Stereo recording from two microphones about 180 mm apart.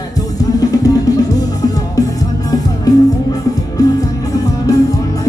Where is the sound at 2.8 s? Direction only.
20° left (ahead or behind).